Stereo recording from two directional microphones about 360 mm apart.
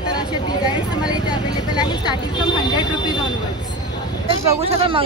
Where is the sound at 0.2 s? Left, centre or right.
Centre.